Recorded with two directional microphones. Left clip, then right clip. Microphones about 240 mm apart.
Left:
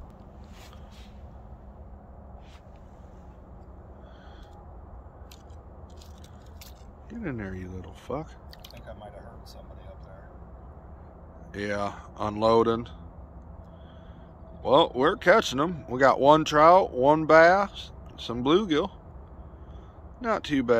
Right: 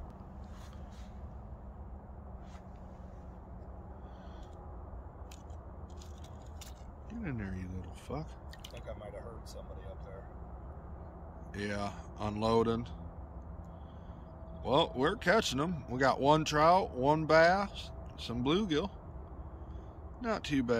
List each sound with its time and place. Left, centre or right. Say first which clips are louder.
7.1 s speech: left 7 dB; centre
11.5 s speech: left 8 dB; centre
14.6 s speech: left 9 dB; centre
20.2 s speech: left 7 dB; centre